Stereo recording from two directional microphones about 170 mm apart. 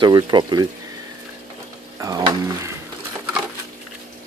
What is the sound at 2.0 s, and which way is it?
Speech, 20° right (ahead or behind).